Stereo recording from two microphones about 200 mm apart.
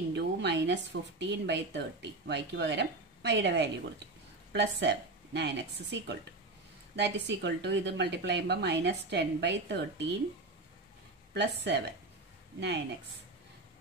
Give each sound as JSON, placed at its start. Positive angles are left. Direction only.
{"t": 0.1, "sound": "a sound", "side_deg": -60}
{"t": 1.2, "sound": "speech", "side_deg": -60}
{"t": 11.3, "sound": "speech", "side_deg": -60}